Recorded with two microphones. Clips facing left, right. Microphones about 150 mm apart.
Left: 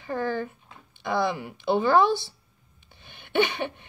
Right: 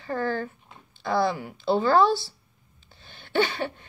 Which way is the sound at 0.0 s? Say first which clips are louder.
Even; 15° left (ahead or behind).